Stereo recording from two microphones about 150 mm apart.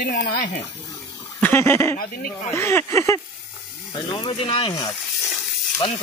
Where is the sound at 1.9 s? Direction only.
75° left (ahead or behind).